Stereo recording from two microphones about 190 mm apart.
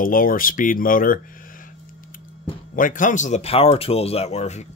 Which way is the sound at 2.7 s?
45° left (ahead or behind).